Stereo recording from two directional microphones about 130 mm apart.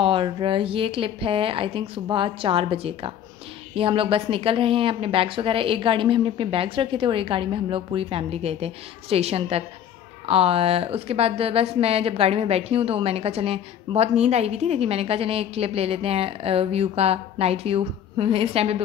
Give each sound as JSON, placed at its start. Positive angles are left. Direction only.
{"t": 0.0, "sound": "a woman's voice", "side_deg": -40}